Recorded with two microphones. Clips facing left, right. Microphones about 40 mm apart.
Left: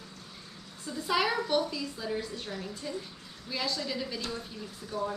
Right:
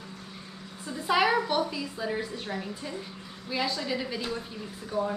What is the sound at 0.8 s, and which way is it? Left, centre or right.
A woman's voice, centre.